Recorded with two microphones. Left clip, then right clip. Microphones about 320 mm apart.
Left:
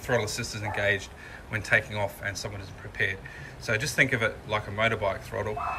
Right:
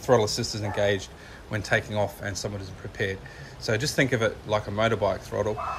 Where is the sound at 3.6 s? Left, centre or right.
Centre.